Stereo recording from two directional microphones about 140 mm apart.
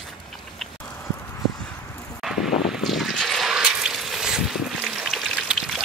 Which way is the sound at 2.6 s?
Centre (ahead or behind).